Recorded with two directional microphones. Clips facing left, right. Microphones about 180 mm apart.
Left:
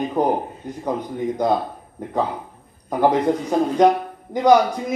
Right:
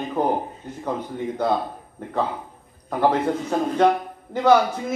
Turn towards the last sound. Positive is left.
turn(degrees=15)  # may be behind; listen again after turning